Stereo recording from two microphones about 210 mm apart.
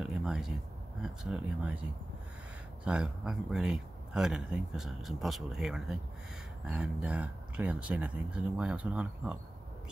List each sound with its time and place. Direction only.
0.0 s a sound: centre (ahead or behind)
1.0 s speech: 5° right (ahead or behind)
2.8 s speech: 5° right (ahead or behind)